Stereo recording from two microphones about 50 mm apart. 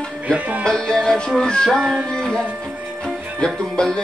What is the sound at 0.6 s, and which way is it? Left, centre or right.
Music, centre.